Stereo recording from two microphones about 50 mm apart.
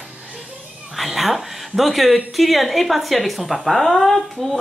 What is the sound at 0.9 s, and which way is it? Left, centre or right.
Speech, centre.